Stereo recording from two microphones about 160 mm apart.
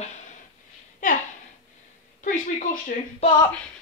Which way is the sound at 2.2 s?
55° left (ahead or behind).